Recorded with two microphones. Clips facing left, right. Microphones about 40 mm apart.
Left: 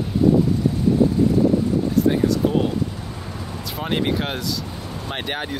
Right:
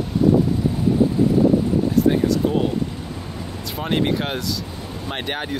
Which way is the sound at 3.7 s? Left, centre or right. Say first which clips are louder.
Right 1 dB; centre.